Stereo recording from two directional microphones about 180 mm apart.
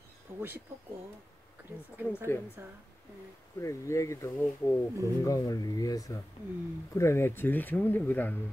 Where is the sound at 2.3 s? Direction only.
15° left (ahead or behind).